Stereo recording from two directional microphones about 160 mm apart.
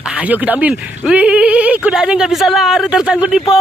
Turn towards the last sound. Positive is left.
turn(degrees=-5)  # may be behind; listen again after turning